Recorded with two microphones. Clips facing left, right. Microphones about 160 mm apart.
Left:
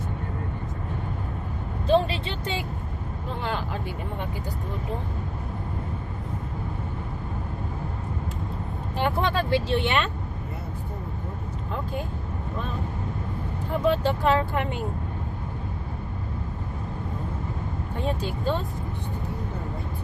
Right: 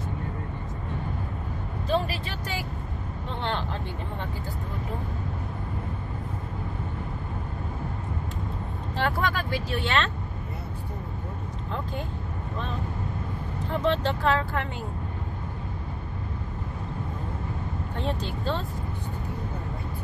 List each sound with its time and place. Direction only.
1.9 s speech: 25° left (ahead or behind)
8.9 s speech: 15° left (ahead or behind)
9.3 s speech: 30° left (ahead or behind)
13.8 s speech: 10° left (ahead or behind)
17.9 s speech: 10° left (ahead or behind)